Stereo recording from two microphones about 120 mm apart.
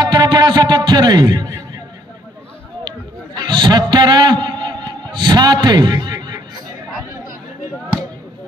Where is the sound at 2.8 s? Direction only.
40° right (ahead or behind).